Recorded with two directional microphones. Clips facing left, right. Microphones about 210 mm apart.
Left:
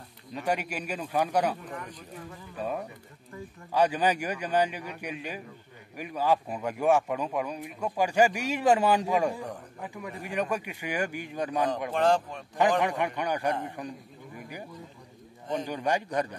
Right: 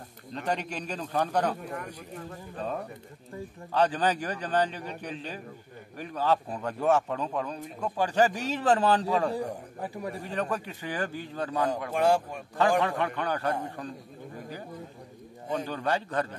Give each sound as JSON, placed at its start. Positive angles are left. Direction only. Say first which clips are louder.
{"t": 0.3, "sound": "a man's voice", "louder": "left 1 dB", "side_deg": 10}
{"t": 9.8, "sound": "a man's voice", "louder": "right 4 dB", "side_deg": -35}
{"t": 10.2, "sound": "a man's voice", "louder": "left 3 dB", "side_deg": 15}
{"t": 11.9, "sound": "speech", "louder": "right 1 dB", "side_deg": -10}
{"t": 12.8, "sound": "a man's voice", "louder": "even", "side_deg": 15}
{"t": 15.5, "sound": "a man's voice", "louder": "left 1 dB", "side_deg": 10}